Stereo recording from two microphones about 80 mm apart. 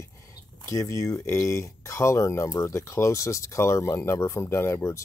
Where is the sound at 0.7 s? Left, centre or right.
Left.